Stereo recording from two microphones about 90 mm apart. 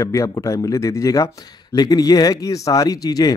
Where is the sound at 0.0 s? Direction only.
40° left (ahead or behind).